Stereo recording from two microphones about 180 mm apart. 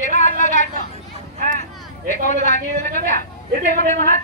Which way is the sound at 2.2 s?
45° left (ahead or behind).